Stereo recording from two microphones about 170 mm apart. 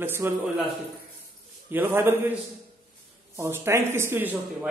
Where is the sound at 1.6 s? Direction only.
10° right (ahead or behind).